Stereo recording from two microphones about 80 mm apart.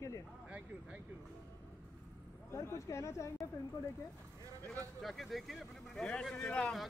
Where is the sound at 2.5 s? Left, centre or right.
Left.